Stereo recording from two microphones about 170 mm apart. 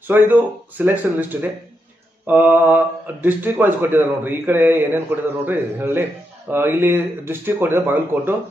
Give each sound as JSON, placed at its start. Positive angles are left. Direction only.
{"t": 0.1, "sound": "speech", "side_deg": -10}